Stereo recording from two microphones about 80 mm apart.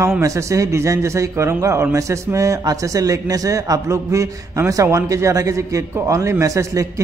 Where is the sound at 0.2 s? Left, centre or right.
Right.